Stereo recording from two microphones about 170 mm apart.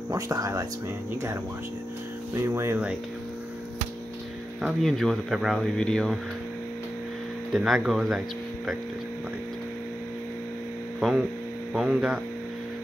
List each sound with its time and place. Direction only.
0.1 s speech: 20° right (ahead or behind)
2.3 s speech: 15° right (ahead or behind)
4.6 s speech: centre (ahead or behind)
7.5 s speech: centre (ahead or behind)
11.0 s hum: centre (ahead or behind)
11.7 s speech: 5° right (ahead or behind)